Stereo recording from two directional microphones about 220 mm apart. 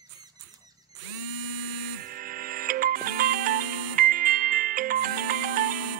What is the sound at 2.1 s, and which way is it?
Music, 40° right (ahead or behind).